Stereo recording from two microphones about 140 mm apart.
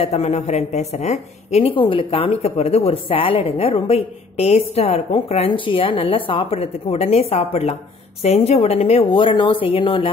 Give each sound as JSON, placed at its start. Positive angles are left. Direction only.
{"t": 0.0, "sound": "a woman's voice", "side_deg": 50}